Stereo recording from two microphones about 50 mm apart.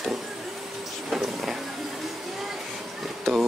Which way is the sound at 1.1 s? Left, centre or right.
Centre.